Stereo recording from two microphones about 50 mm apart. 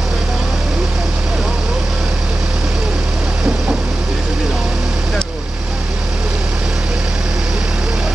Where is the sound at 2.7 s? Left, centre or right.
Centre.